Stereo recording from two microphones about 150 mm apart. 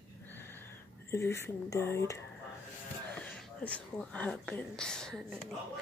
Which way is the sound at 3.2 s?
10° left (ahead or behind).